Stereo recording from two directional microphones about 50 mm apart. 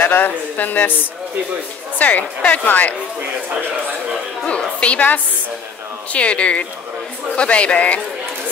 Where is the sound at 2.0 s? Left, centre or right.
Left.